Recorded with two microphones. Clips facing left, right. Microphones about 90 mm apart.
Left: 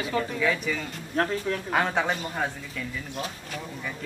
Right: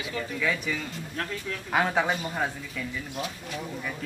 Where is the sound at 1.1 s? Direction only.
45° left (ahead or behind).